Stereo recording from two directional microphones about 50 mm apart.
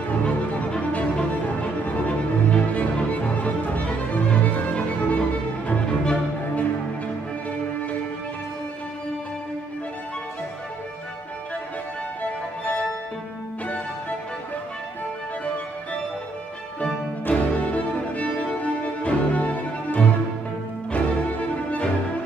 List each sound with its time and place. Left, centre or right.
0.2 s music: left
12.2 s music: left
15.4 s music: left